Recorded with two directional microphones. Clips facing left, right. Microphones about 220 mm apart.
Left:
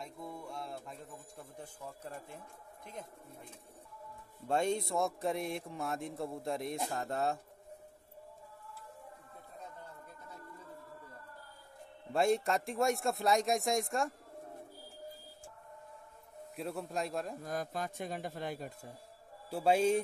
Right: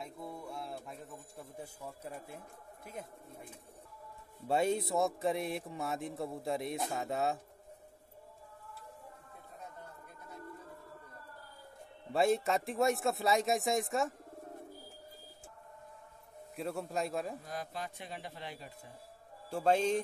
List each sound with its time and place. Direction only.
0.0 s speech: 5° right (ahead or behind)
4.5 s a man's voice: 5° right (ahead or behind)
12.1 s a man's voice: centre (ahead or behind)
16.5 s a man's voice: centre (ahead or behind)
17.5 s a man's voice: 45° left (ahead or behind)
19.5 s a man's voice: 10° left (ahead or behind)